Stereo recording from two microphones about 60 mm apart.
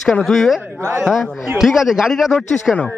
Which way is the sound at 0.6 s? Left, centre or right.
Right.